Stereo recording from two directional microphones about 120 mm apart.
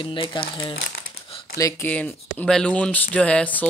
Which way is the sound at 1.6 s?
30° left (ahead or behind).